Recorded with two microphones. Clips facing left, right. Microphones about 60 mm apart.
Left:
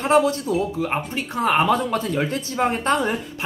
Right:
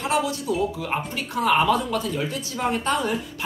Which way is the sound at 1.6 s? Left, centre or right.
Left.